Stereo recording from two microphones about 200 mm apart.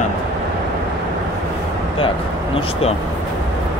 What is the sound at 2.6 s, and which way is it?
Speech, 30° left (ahead or behind).